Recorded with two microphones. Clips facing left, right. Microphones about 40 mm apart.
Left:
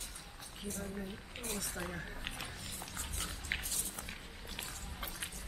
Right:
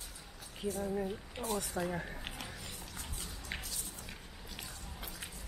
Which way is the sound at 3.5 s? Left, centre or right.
Centre.